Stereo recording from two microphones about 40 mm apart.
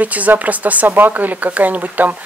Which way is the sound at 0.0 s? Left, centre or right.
Right.